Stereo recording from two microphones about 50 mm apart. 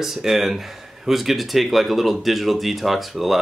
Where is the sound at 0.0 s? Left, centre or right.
Centre.